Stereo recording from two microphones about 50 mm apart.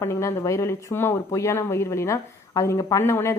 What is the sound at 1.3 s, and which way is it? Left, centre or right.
Speech, left.